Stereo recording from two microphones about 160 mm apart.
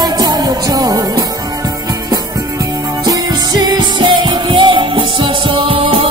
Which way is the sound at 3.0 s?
25° right (ahead or behind).